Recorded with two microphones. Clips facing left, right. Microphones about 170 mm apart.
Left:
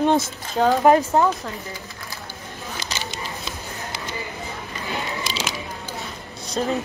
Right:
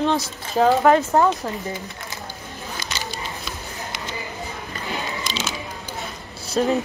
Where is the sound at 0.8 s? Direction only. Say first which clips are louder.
Even; 15° left (ahead or behind).